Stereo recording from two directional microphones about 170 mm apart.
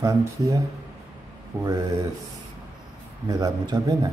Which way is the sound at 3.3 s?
20° right (ahead or behind).